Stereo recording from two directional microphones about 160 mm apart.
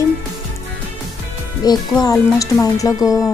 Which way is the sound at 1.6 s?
25° left (ahead or behind).